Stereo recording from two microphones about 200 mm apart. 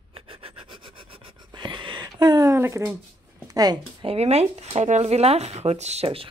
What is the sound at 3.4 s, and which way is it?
Speech, 20° right (ahead or behind).